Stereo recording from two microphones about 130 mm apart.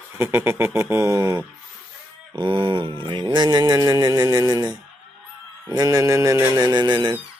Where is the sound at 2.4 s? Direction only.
40° right (ahead or behind).